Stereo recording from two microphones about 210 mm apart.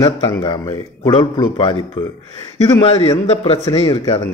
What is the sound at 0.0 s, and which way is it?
A man's voice, 15° left (ahead or behind).